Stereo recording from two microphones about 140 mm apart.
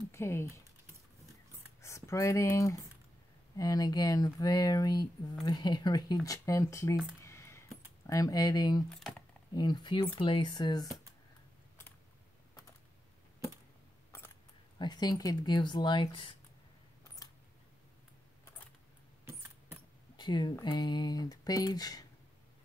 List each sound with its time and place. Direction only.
0.1 s speech: 15° left (ahead or behind)
1.8 s speech: 20° left (ahead or behind)
7.2 s a sound: 20° left (ahead or behind)
8.1 s speech: 25° left (ahead or behind)
14.8 s speech: 30° left (ahead or behind)
20.2 s speech: 30° left (ahead or behind)